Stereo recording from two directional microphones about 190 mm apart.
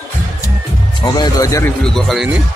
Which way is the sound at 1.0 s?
20° left (ahead or behind).